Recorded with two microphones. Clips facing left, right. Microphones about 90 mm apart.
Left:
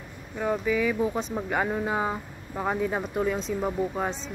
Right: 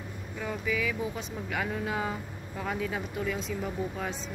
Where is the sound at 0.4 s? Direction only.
35° left (ahead or behind).